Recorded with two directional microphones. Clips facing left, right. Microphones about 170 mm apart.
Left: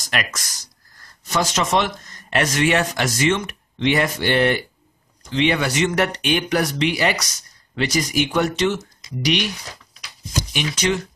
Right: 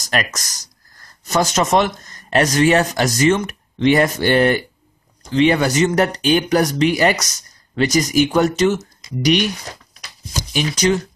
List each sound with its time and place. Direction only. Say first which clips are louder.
0.0 s speech: right 4 dB; 40° right (ahead or behind)